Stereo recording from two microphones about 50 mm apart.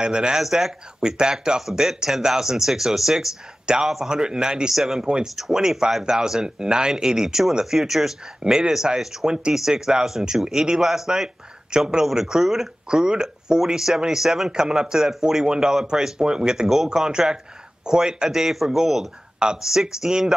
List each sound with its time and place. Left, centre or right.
0.0 s speech: centre
1.0 s speech: centre